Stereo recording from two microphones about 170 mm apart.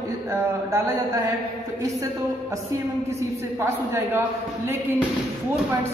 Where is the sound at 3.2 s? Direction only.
15° right (ahead or behind).